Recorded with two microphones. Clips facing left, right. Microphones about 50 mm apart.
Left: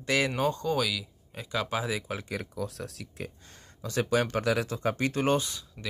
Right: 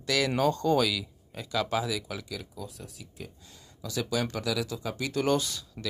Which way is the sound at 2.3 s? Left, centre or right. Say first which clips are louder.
Left 5 dB; left.